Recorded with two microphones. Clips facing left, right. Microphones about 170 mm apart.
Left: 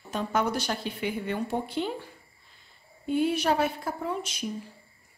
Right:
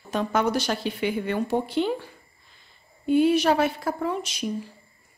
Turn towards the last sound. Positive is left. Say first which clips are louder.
# right 4 dB
turn(degrees=-90)